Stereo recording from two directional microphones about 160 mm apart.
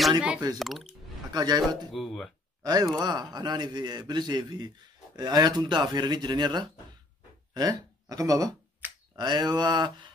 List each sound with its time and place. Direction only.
0.6 s speech: centre (ahead or behind)
1.3 s a man's voice: 25° right (ahead or behind)
1.9 s speech: centre (ahead or behind)
2.6 s a man's voice: 25° right (ahead or behind)